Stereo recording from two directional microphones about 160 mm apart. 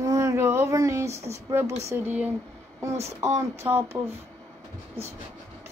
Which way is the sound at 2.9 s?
45° right (ahead or behind).